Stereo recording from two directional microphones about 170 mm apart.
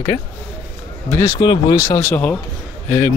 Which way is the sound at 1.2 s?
20° left (ahead or behind).